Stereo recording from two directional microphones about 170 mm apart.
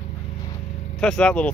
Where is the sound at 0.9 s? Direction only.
5° left (ahead or behind).